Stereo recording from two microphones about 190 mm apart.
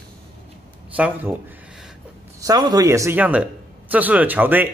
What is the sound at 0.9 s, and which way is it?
Speech, 10° right (ahead or behind).